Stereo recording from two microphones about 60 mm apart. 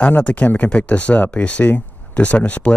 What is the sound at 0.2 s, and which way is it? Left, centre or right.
Speech, left.